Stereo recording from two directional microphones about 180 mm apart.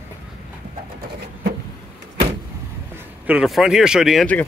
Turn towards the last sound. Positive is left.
turn(degrees=0)  # may be behind; listen again after turning